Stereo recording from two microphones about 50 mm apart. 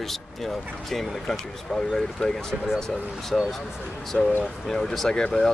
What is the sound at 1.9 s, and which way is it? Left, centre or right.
Speech, centre.